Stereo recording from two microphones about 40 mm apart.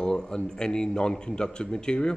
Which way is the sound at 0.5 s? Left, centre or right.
Centre.